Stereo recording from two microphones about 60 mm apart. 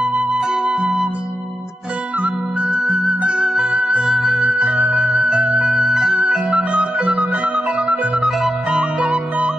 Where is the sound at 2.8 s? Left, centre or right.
Centre.